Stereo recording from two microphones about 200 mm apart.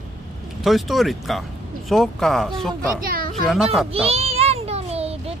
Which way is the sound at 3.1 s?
45° right (ahead or behind).